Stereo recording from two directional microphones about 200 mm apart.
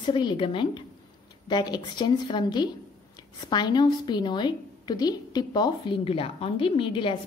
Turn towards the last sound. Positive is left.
turn(degrees=25)  # may be behind; listen again after turning